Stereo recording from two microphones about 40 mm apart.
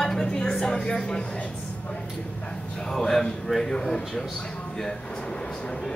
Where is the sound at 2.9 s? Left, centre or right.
Centre.